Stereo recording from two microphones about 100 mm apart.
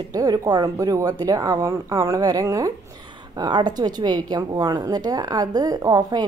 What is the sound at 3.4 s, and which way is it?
A woman's voice, 45° right (ahead or behind).